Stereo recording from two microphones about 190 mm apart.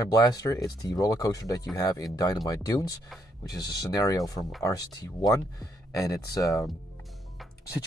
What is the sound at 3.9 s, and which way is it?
Speech, 20° left (ahead or behind).